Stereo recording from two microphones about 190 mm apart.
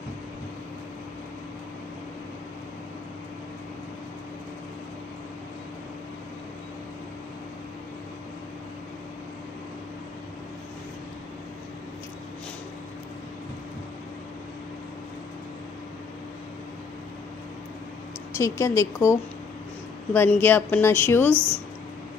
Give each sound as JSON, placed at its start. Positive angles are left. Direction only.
{"t": 18.3, "sound": "speech", "side_deg": 15}